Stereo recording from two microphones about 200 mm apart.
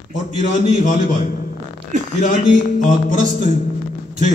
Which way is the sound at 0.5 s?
40° left (ahead or behind).